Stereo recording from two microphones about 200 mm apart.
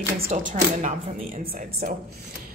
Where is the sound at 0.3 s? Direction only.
40° right (ahead or behind).